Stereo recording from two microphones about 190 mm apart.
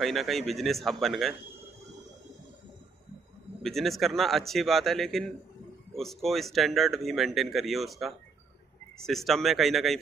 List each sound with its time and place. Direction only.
0.0 s speech: centre (ahead or behind)
3.6 s speech: centre (ahead or behind)